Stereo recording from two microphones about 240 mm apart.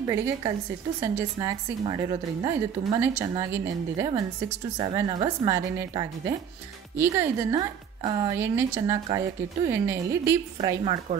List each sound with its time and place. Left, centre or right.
0.1 s a woman's voice: centre